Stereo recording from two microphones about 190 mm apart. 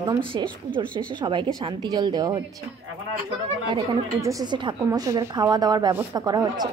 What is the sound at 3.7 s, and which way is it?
A woman's voice, 20° right (ahead or behind).